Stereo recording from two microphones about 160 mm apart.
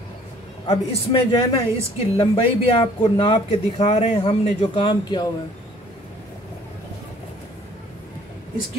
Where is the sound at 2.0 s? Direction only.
35° left (ahead or behind).